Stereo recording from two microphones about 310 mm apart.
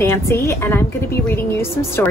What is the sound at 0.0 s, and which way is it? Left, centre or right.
A woman's voice, centre.